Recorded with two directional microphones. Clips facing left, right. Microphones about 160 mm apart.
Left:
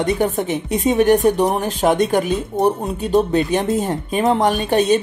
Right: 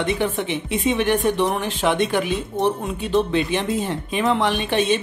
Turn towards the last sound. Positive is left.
turn(degrees=40)  # may be behind; listen again after turning